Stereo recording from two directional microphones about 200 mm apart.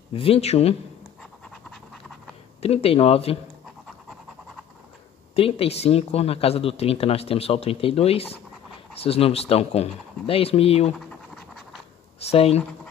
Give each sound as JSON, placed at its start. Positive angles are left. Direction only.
{"t": 0.1, "sound": "speech", "side_deg": 30}
{"t": 2.6, "sound": "speech", "side_deg": 30}
{"t": 5.3, "sound": "speech", "side_deg": 30}
{"t": 11.1, "sound": "scratch", "side_deg": 5}
{"t": 12.2, "sound": "speech", "side_deg": 30}